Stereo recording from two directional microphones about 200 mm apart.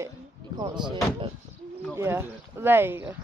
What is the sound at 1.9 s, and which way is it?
Speech, 10° right (ahead or behind).